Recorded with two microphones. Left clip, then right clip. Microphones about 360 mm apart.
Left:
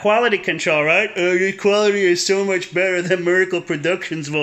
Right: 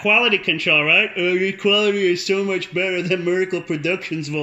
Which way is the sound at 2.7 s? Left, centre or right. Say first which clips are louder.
Left 3 dB; left.